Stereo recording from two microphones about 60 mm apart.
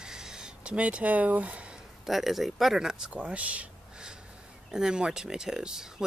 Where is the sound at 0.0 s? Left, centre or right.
Centre.